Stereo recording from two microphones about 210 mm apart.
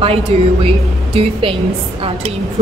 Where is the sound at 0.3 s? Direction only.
30° right (ahead or behind).